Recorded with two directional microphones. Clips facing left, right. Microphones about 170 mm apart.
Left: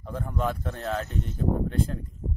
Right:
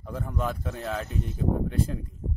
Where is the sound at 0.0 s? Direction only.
5° right (ahead or behind).